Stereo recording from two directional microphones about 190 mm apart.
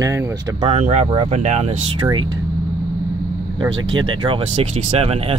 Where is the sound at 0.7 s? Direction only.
40° right (ahead or behind); by 2.3 s 20° right (ahead or behind).